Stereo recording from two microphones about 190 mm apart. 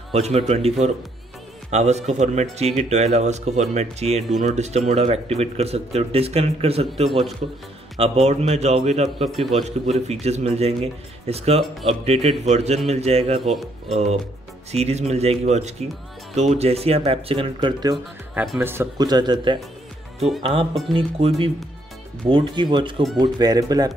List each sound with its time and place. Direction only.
0.1 s speech: 35° right (ahead or behind)
7.1 s speech: centre (ahead or behind)
8.0 s speech: 35° right (ahead or behind)
13.5 s speech: centre (ahead or behind)
13.9 s speech: 35° right (ahead or behind)
18.6 s speech: 10° right (ahead or behind)
20.9 s speech: 30° right (ahead or behind)